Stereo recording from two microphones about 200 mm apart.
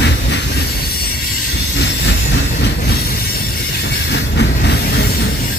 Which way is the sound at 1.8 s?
60° left (ahead or behind).